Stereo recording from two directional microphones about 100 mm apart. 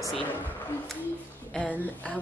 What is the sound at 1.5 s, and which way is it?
Speech, 15° left (ahead or behind).